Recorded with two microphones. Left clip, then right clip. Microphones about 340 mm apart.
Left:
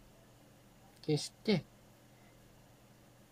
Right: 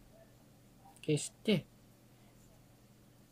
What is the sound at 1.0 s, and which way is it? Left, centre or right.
Speech, centre.